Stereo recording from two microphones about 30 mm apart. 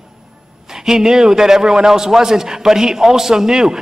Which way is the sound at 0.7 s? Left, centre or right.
Centre.